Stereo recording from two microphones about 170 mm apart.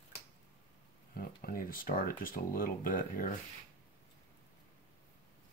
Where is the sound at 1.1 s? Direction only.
60° left (ahead or behind).